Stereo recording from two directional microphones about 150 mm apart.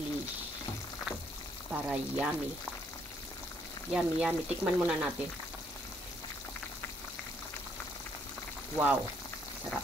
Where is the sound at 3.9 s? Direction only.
5° right (ahead or behind).